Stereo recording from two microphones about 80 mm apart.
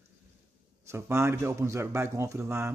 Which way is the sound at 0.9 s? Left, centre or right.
Right.